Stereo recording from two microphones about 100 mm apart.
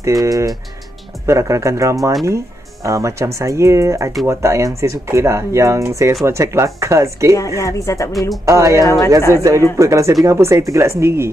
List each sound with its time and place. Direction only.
0.0 s speech: 35° right (ahead or behind)
7.6 s speech: 30° left (ahead or behind)
8.1 s speech: centre (ahead or behind)
8.5 s speech: 35° right (ahead or behind)
8.8 s speech: 35° left (ahead or behind)
9.3 s speech: 30° right (ahead or behind)